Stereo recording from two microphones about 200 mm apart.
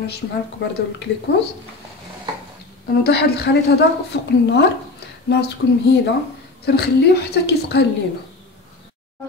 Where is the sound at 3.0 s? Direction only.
55° left (ahead or behind).